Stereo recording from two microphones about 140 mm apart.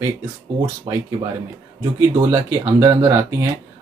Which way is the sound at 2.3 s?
20° right (ahead or behind).